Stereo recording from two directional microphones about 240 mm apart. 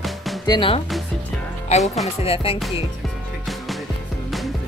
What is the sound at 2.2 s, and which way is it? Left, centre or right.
Speech, left.